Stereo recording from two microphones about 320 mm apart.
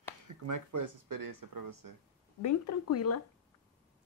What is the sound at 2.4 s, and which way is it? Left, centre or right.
Speech, left.